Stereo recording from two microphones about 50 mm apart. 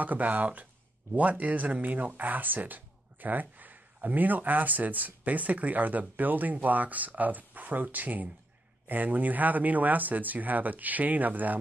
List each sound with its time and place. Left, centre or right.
0.0 s speech: right